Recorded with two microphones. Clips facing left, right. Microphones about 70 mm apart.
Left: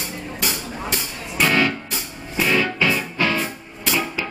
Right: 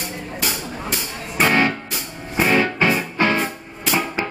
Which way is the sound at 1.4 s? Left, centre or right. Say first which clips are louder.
Right 2 dB; right.